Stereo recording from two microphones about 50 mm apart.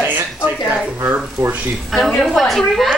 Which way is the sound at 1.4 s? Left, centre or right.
Right.